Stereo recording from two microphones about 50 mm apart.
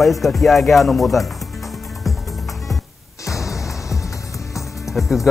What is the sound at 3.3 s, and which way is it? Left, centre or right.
Music, left.